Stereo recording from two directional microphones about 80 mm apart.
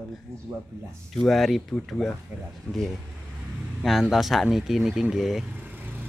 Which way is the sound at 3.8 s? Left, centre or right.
Centre.